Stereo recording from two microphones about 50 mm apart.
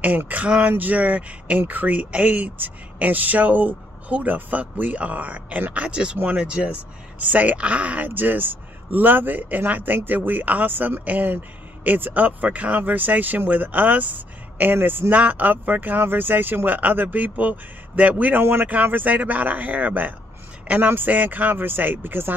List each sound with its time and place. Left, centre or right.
0.0 s speech: right
15.1 s speech: right
18.4 s speech: right
18.7 s a man's voice: right